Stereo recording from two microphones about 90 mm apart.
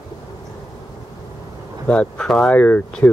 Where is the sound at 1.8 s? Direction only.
10° left (ahead or behind).